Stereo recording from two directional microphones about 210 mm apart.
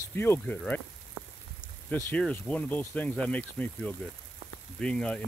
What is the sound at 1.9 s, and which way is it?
Speech, 10° left (ahead or behind).